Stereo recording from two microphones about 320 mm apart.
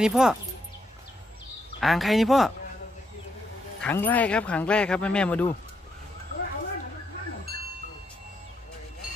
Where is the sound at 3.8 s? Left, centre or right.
Centre.